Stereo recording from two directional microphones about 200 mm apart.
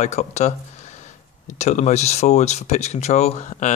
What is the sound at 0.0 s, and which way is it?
Speech, 35° left (ahead or behind).